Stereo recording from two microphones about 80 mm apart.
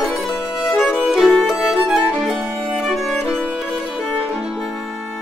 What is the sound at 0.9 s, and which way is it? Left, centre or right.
Violin, centre.